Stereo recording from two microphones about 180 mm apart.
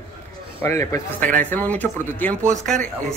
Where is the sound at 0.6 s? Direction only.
15° left (ahead or behind).